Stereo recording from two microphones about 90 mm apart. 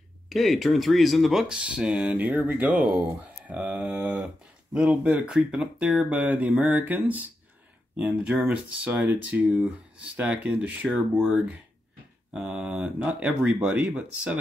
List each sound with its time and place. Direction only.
0.3 s speech: centre (ahead or behind)